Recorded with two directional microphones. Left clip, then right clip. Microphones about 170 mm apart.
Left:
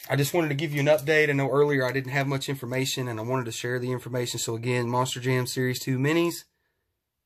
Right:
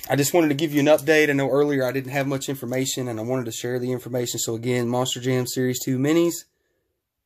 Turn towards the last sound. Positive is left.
turn(degrees=-20)  # may be behind; listen again after turning